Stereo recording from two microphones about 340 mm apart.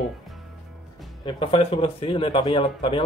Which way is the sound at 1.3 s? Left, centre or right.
Centre.